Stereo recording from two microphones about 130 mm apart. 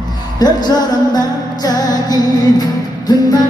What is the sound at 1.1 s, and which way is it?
Music, 30° left (ahead or behind).